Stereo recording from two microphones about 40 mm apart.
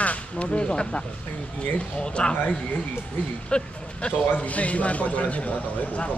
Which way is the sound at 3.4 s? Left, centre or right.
Left.